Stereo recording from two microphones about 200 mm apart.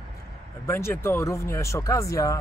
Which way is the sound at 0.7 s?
15° left (ahead or behind).